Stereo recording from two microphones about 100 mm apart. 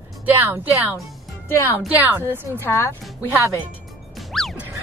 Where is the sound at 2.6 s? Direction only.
25° left (ahead or behind).